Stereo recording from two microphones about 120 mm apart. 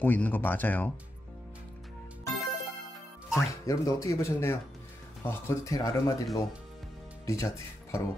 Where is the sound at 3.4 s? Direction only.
25° left (ahead or behind).